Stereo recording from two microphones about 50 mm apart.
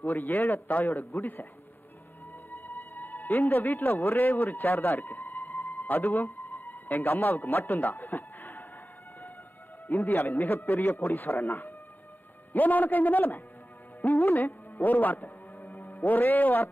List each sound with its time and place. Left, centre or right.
0.0 s a man's voice: left
2.5 s a man's voice: left
9.8 s a man's voice: left
14.4 s music: left